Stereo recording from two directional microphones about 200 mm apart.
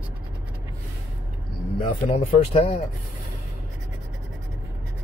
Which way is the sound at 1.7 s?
25° left (ahead or behind).